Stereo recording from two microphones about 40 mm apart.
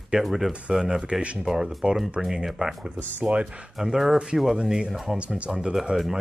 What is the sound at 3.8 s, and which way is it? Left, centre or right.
Speech, centre.